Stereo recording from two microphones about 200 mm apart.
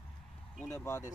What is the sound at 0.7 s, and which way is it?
Speech, 15° left (ahead or behind).